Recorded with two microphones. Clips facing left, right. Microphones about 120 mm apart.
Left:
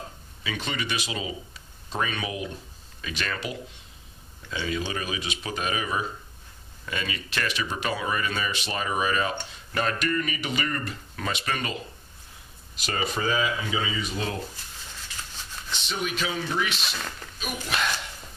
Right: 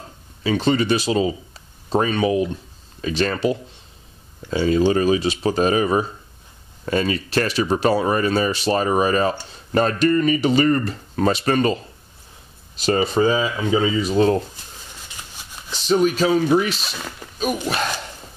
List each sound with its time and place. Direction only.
0.4 s speech: 35° right (ahead or behind)
15.1 s a sound: 15° right (ahead or behind)
15.7 s speech: 40° right (ahead or behind)
16.8 s speech: 5° right (ahead or behind)
17.6 s speech: 40° right (ahead or behind)